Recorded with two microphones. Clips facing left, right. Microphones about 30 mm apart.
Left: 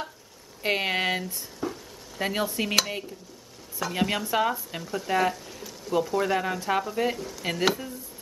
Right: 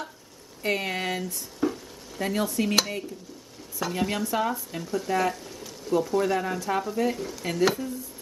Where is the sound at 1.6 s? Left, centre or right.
Centre.